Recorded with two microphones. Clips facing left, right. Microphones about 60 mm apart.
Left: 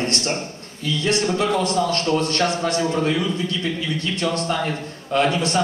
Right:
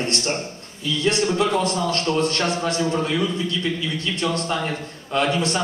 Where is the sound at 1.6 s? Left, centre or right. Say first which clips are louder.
Left 2 dB; right.